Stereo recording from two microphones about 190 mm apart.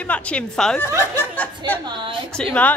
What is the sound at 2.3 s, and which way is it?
Speech, 5° left (ahead or behind).